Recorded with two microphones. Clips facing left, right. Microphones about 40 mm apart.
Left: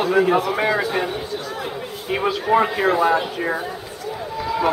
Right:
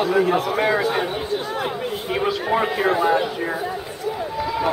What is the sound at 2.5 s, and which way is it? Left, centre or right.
Speech, centre.